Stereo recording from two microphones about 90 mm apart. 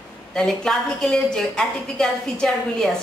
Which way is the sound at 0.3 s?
5° left (ahead or behind).